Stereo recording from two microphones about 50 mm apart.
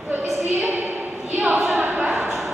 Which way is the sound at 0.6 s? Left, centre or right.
Right.